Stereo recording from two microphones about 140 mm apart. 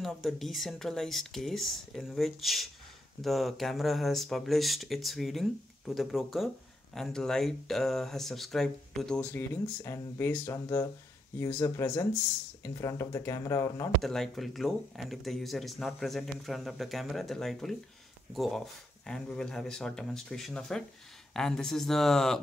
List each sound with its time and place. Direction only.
0.0 s speech: centre (ahead or behind); by 13.9 s 25° left (ahead or behind)
14.0 s speech: centre (ahead or behind)